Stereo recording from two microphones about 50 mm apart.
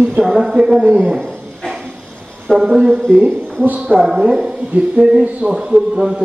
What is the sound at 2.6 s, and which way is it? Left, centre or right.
A man's voice, centre.